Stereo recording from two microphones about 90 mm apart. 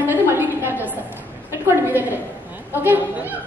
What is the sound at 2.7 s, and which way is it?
Chatter, 20° right (ahead or behind).